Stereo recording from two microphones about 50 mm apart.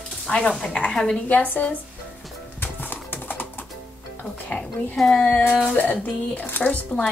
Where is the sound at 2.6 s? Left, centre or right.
Left.